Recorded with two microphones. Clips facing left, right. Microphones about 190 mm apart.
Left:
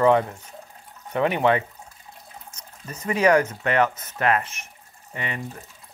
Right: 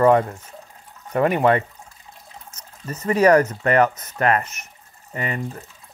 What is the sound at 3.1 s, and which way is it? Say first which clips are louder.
Speech: right 4 dB; 35° right (ahead or behind).